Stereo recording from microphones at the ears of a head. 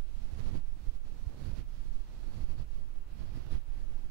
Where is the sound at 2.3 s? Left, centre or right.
Right.